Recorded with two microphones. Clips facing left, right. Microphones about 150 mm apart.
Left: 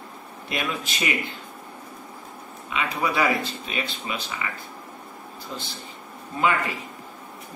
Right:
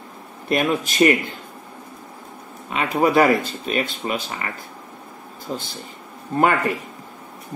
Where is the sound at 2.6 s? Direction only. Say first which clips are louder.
Right 7 dB; 45° right (ahead or behind).